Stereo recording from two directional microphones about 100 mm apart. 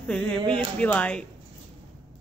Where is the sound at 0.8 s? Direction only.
10° left (ahead or behind).